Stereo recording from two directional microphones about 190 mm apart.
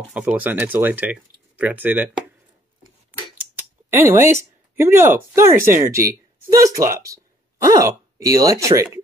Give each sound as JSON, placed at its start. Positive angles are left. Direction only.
{"t": 0.1, "sound": "speech", "side_deg": -10}
{"t": 3.9, "sound": "speech", "side_deg": -10}